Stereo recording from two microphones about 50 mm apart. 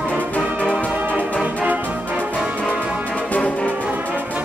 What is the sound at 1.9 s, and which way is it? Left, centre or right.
Music, right.